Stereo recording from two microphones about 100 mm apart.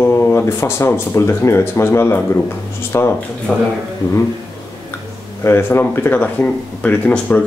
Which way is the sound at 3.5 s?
5° right (ahead or behind).